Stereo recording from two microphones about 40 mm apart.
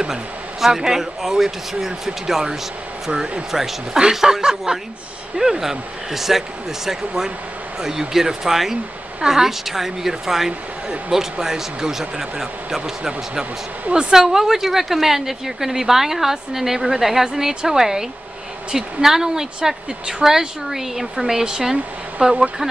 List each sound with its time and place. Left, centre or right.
0.1 s a woman's voice: centre
3.5 s a woman's voice: centre
7.8 s a woman's voice: centre
14.1 s a woman's voice: centre